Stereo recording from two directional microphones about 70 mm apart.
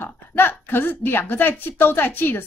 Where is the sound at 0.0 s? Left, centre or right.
Left.